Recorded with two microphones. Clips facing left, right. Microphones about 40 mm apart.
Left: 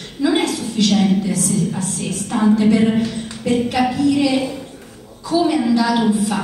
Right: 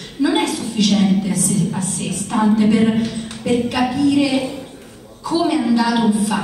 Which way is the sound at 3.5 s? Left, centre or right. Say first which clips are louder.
Even; centre.